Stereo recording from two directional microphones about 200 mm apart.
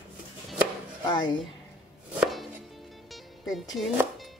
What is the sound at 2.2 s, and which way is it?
Chopping, centre (ahead or behind).